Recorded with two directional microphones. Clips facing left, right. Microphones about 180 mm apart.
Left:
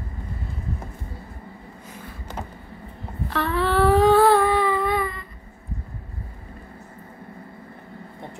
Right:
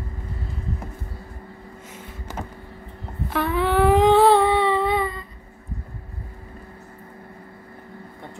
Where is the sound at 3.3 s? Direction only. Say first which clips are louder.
Right 1 dB; 15° right (ahead or behind).